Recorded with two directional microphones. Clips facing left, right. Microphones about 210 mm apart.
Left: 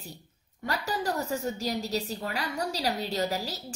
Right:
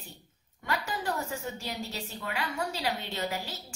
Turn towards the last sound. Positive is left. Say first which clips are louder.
# left 4 dB
turn(degrees=40)  # may be behind; listen again after turning